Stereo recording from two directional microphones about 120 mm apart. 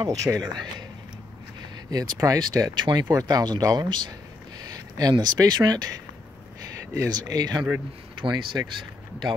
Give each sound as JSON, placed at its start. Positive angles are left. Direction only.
{"t": 0.0, "sound": "speech", "side_deg": -30}
{"t": 1.9, "sound": "speech", "side_deg": -30}